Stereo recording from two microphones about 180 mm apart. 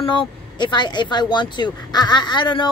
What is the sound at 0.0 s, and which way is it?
A woman's voice, 30° left (ahead or behind).